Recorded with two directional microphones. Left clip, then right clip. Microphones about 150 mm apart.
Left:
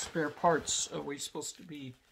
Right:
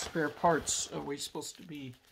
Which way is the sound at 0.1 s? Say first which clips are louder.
Even; 25° right (ahead or behind).